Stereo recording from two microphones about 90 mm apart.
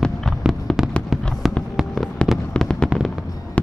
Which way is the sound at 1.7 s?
5° left (ahead or behind).